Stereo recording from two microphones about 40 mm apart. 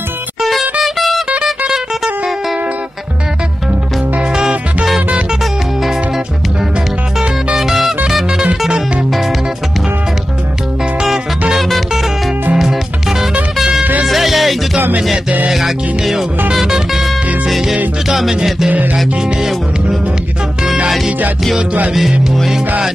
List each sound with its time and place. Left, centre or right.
0.4 s music: centre
7.5 s music: centre
11.5 s music: centre